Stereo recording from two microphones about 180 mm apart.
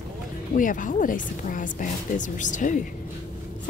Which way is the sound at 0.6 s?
50° left (ahead or behind).